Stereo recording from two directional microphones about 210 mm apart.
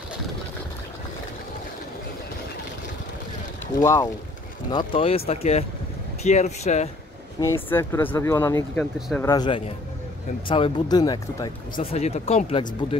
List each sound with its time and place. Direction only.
3.8 s speech: 15° left (ahead or behind); by 6.9 s 30° left (ahead or behind)
7.3 s speech: 15° left (ahead or behind)
9.3 s speech: 20° left (ahead or behind)
11.8 s speech: 30° left (ahead or behind)